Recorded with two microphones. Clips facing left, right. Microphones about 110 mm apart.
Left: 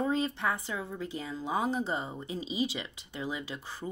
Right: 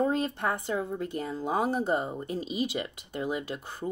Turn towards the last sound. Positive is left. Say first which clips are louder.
# right 4 dB
turn(degrees=-50)  # may be behind; listen again after turning